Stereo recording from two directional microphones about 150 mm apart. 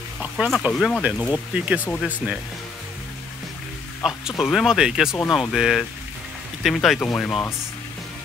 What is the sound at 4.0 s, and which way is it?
Speech, centre (ahead or behind).